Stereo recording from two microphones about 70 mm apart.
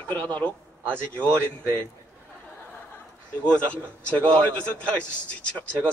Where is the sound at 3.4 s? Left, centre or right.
Centre.